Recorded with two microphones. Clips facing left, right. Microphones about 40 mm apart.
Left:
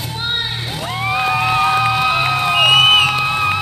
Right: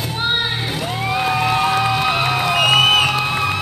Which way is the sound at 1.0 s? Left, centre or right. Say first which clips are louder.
Left 2 dB; centre.